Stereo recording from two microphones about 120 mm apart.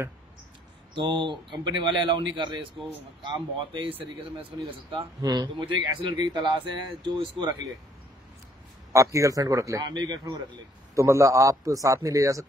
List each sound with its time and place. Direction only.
0.9 s speech: 40° right (ahead or behind)
8.9 s a man's voice: 25° right (ahead or behind)